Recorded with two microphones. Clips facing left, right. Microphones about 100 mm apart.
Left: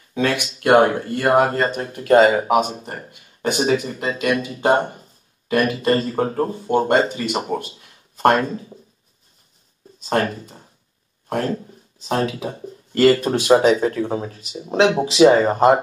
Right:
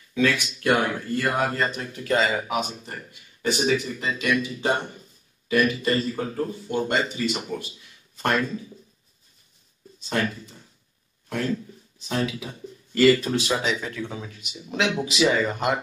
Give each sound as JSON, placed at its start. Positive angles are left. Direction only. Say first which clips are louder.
{"t": 0.1, "sound": "speech", "louder": "left 2 dB", "side_deg": 40}
{"t": 10.0, "sound": "speech", "louder": "left 6 dB", "side_deg": 45}